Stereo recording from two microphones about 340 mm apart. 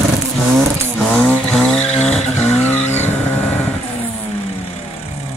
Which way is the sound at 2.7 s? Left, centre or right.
Centre.